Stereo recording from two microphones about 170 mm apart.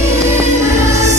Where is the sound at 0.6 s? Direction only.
15° right (ahead or behind).